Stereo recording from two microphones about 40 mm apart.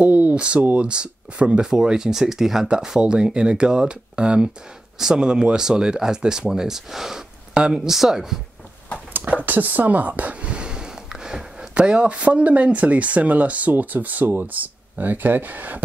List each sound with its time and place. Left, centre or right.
0.0 s a sound: right
0.7 s speech: right; by 2.7 s centre
2.7 s speech: centre
4.9 s speech: centre
9.3 s speech: right
10.4 s a sound: right
11.7 s speech: right